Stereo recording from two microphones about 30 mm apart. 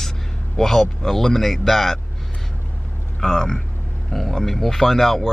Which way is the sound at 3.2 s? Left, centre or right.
Centre.